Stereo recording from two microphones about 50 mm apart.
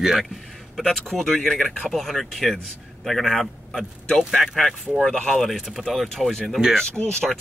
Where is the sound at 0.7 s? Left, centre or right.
Centre.